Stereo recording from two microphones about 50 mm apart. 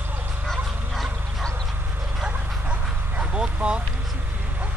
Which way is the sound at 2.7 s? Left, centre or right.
Right.